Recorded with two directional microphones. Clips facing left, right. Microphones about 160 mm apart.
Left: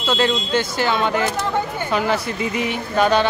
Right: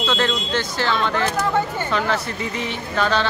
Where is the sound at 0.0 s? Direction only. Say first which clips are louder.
Left 2 dB; 10° left (ahead or behind).